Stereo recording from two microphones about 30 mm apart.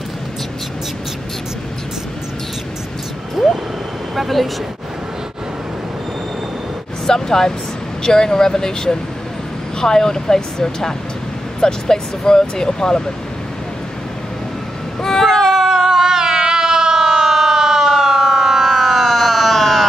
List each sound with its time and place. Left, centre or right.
3.4 s vehicle: centre
7.1 s speech: centre
15.0 s a sound: centre
15.7 s cat: centre